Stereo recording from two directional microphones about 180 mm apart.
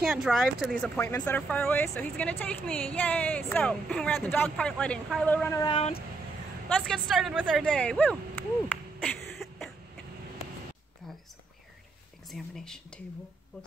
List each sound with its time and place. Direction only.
0.0 s speech: centre (ahead or behind)
0.9 s speech: 10° left (ahead or behind)
5.6 s speech: 30° left (ahead or behind)
6.7 s speech: centre (ahead or behind)
12.3 s speech: centre (ahead or behind)